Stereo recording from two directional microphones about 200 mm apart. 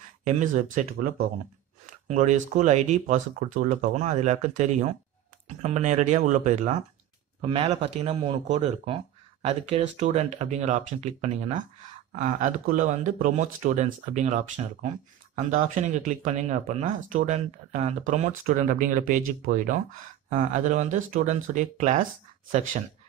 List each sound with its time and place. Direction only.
0.2 s speech: 35° right (ahead or behind)
7.4 s speech: 25° right (ahead or behind)